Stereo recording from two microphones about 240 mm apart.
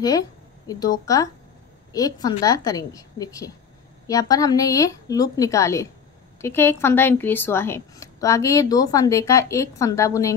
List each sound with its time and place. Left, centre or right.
0.7 s a woman's voice: centre